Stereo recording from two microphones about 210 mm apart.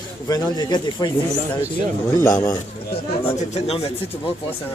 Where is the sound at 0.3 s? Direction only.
20° left (ahead or behind).